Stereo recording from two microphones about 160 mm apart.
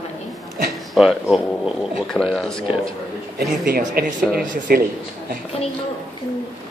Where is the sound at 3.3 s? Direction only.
70° right (ahead or behind).